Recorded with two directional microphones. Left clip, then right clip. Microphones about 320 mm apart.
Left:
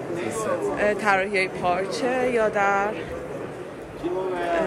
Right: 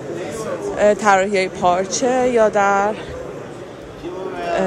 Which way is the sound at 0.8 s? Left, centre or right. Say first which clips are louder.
Right 9 dB; centre.